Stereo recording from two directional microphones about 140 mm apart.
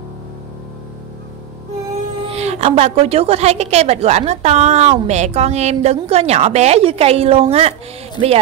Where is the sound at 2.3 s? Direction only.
50° right (ahead or behind).